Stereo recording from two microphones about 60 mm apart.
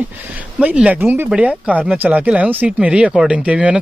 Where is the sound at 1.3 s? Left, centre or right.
Centre.